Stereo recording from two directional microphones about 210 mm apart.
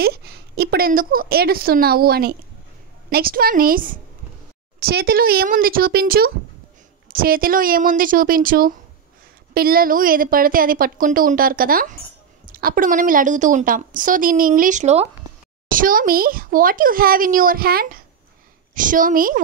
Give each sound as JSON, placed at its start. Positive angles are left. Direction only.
{"t": 0.0, "sound": "a woman's voice", "side_deg": -50}